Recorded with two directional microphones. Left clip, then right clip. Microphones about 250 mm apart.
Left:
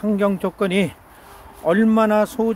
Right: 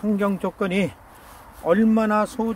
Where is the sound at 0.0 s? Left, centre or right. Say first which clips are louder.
Left 4 dB; left.